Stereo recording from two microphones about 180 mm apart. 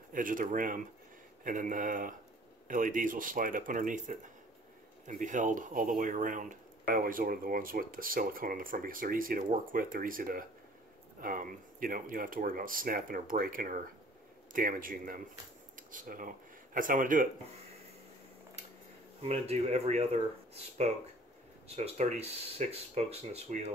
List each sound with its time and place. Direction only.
0.1 s speech: 50° right (ahead or behind)
19.2 s speech: 35° right (ahead or behind)